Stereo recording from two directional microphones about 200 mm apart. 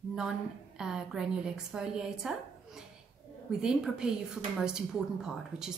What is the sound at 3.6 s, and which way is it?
A woman's voice, 5° right (ahead or behind).